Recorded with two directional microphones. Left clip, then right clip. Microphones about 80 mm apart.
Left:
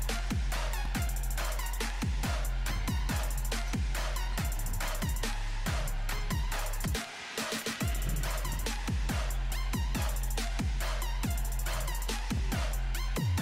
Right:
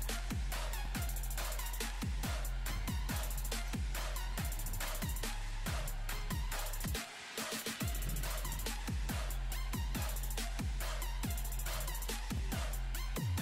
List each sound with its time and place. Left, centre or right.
0.0 s music: right